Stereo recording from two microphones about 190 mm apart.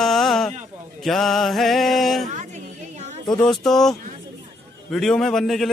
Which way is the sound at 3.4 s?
Centre (ahead or behind).